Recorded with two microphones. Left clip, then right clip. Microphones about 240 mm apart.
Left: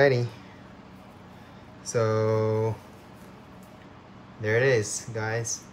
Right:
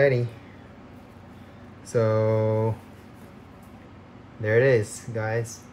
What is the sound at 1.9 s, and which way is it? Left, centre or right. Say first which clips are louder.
Speech: right 2 dB; centre.